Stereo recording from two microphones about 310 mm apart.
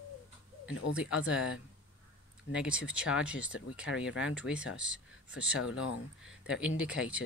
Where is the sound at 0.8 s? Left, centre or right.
Left.